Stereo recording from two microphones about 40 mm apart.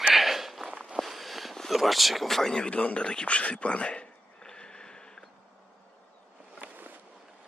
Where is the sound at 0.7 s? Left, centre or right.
Right.